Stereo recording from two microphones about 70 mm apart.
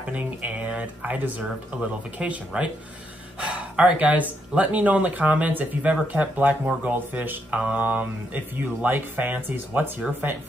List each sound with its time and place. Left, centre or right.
0.1 s speech: right